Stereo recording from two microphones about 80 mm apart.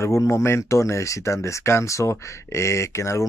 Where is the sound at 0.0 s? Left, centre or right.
Left.